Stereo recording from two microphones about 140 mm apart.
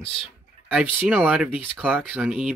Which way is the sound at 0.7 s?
10° right (ahead or behind).